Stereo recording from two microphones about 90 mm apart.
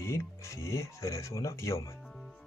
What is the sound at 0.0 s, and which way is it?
Speech, 30° left (ahead or behind).